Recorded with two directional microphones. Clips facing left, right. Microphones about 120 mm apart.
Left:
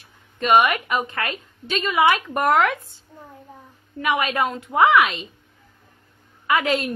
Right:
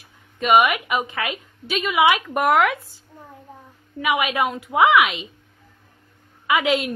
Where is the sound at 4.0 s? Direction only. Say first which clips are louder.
Even; 5° right (ahead or behind).